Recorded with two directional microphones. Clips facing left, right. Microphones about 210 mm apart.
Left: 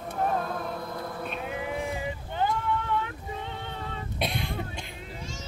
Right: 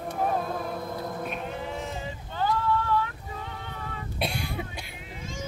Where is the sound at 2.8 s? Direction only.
20° left (ahead or behind).